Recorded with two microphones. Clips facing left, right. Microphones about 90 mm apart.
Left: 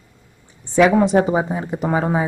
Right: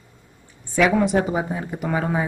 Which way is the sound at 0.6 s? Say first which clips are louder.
Left 4 dB; 20° left (ahead or behind).